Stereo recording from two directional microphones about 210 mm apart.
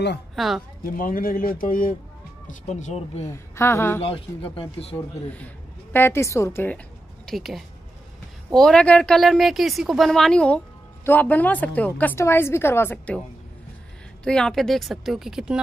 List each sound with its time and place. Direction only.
0.4 s a woman's voice: centre (ahead or behind)
0.9 s a man's voice: 40° left (ahead or behind)
3.3 s a woman's voice: 10° left (ahead or behind)
4.0 s speech: 25° left (ahead or behind)
4.9 s a woman's voice: 5° left (ahead or behind)
14.2 s a woman's voice: 5° left (ahead or behind)